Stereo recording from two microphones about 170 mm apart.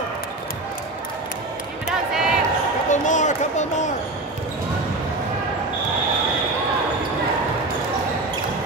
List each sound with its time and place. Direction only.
2.1 s basketball bounce: 5° right (ahead or behind)
2.9 s speech: 45° left (ahead or behind)